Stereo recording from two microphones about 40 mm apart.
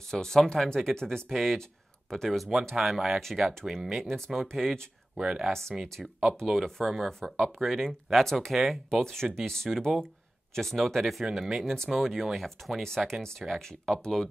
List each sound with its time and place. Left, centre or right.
0.1 s speech: centre
5.1 s speech: centre
5.5 s speech: centre
7.6 s speech: centre
9.0 s speech: centre
11.6 s speech: centre